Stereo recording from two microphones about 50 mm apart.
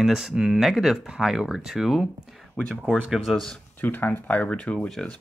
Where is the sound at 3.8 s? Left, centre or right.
Left.